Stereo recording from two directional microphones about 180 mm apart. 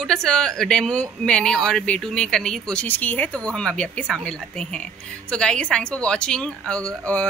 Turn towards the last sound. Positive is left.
turn(degrees=5)  # may be behind; listen again after turning